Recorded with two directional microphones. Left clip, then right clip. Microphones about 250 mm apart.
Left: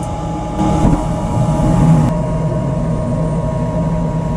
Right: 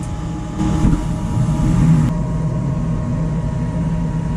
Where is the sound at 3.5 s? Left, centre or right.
Centre.